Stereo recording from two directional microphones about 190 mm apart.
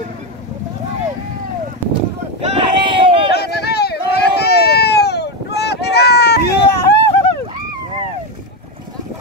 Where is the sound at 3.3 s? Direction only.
60° left (ahead or behind).